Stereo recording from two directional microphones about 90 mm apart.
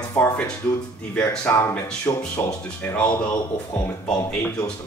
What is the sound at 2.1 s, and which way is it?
Speech, 40° left (ahead or behind).